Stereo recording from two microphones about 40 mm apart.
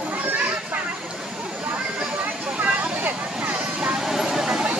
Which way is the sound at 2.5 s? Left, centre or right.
Right.